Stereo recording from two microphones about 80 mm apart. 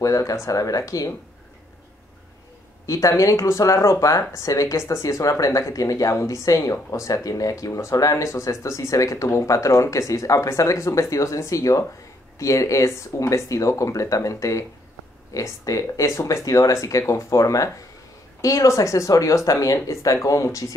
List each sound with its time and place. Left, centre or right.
0.0 s speech: left
2.9 s speech: left